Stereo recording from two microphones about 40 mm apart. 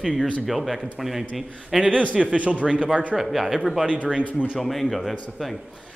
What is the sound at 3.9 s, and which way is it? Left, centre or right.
Speech, right.